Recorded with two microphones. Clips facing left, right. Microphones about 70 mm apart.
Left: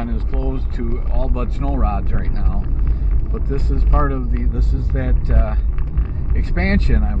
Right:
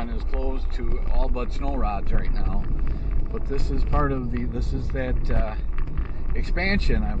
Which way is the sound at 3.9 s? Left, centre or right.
Centre.